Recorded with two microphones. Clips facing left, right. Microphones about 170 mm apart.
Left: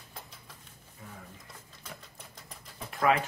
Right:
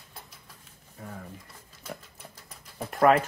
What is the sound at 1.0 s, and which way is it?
Speech, 50° right (ahead or behind).